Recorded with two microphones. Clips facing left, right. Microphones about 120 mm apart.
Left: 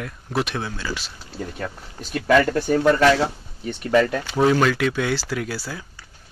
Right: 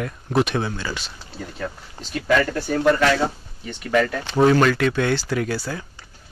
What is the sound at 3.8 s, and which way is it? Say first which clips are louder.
Speech: left 2 dB; 25° left (ahead or behind).